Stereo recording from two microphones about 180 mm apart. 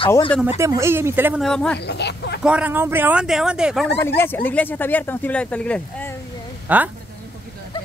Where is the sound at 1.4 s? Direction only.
5° left (ahead or behind).